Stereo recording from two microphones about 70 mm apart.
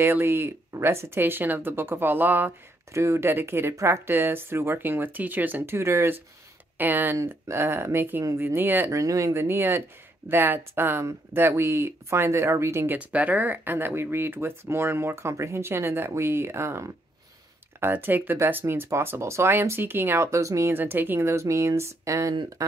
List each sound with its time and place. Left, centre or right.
0.0 s speech: right
2.9 s speech: right
5.8 s speech: right
6.8 s speech: right
8.9 s a sound: right
9.3 s speech: right
12.9 s speech: right
20.7 s speech: right
21.3 s a sound: right
22.6 s speech: right